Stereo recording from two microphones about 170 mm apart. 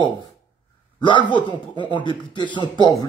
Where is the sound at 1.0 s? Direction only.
25° left (ahead or behind).